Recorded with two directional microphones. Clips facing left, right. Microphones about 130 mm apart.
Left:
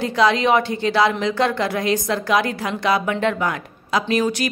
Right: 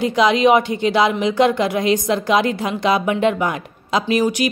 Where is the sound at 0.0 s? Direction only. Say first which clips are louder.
Right 3 dB; 15° right (ahead or behind).